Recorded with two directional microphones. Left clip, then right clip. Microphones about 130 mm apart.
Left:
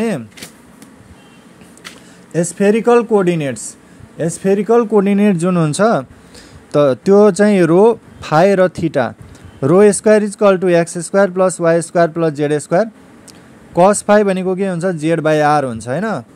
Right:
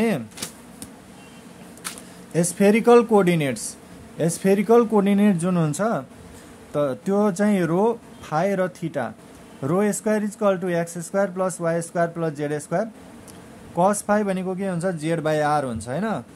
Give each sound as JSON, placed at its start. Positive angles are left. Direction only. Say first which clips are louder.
{"t": 2.3, "sound": "speech", "louder": "left 5 dB", "side_deg": 25}